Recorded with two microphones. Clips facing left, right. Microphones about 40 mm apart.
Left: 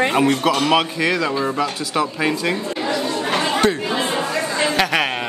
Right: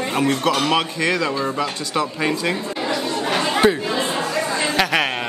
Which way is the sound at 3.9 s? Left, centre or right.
Left.